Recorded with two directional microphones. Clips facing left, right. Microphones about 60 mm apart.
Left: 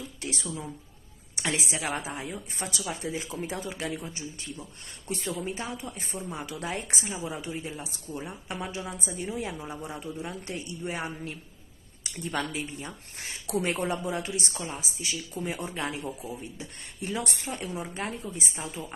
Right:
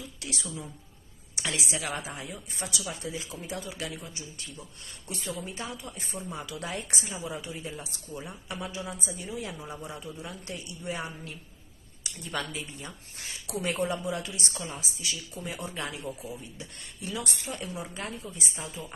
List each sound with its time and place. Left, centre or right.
0.0 s a sound: left
1.4 s speech: left
14.4 s speech: centre